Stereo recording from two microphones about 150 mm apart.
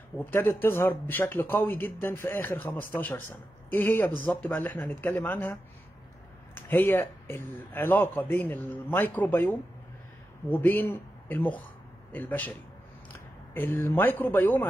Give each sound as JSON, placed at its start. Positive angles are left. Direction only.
{"t": 0.2, "sound": "speech", "side_deg": 15}